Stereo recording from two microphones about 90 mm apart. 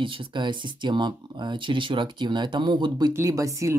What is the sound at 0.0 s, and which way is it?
Speech, 70° right (ahead or behind).